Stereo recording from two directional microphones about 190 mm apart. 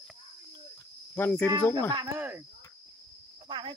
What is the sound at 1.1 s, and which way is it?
Speech, 10° left (ahead or behind).